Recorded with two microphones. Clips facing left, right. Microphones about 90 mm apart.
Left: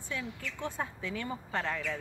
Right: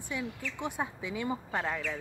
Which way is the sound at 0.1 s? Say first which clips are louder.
Right 2 dB; 15° right (ahead or behind).